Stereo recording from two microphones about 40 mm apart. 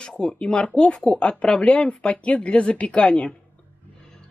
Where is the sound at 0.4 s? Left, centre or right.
Left.